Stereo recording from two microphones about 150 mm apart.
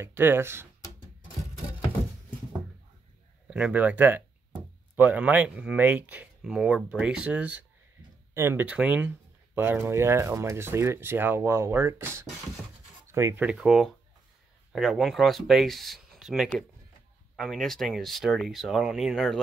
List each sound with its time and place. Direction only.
0.0 s speech: 15° right (ahead or behind)
3.4 s speech: 10° right (ahead or behind)